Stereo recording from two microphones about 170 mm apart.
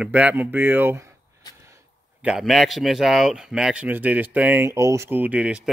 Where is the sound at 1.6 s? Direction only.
15° right (ahead or behind).